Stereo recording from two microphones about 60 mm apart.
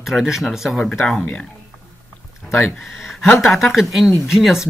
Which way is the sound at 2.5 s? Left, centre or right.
Left.